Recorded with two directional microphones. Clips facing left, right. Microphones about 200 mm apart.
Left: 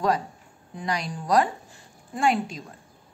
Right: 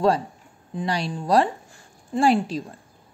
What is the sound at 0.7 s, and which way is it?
A woman's voice, 30° right (ahead or behind).